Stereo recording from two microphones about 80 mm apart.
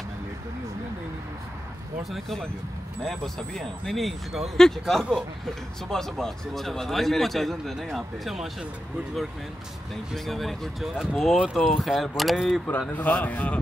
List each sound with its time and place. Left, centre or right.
2.0 s a man's voice: centre
10.1 s a man's voice: centre
12.9 s speech: left